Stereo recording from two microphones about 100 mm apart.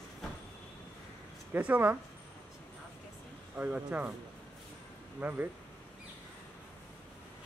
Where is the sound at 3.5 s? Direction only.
15° right (ahead or behind).